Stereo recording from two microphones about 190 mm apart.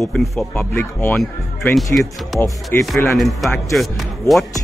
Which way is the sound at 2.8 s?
Centre (ahead or behind).